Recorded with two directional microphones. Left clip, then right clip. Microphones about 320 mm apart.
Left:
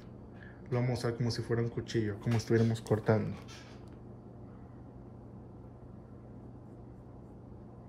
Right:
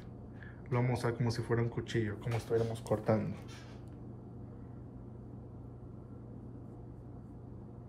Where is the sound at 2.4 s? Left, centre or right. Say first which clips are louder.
Left 2 dB; left.